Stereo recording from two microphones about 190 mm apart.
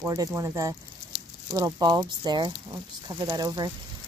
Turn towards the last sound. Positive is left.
turn(degrees=-20)  # may be behind; listen again after turning